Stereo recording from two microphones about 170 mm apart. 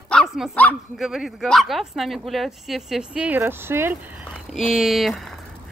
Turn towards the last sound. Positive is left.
turn(degrees=0)  # may be behind; listen again after turning